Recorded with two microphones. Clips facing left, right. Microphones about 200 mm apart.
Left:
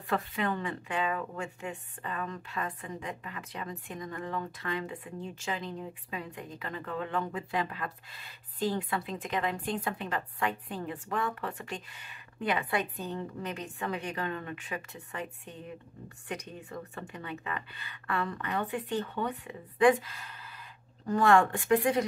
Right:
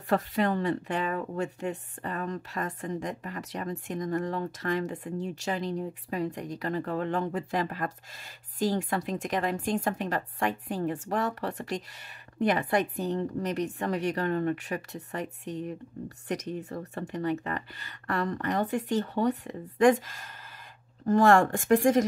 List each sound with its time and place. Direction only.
0.1 s speech: 40° right (ahead or behind)
5.1 s speech: 80° right
5.4 s speech: 40° right (ahead or behind)
16.6 s speech: 40° right (ahead or behind)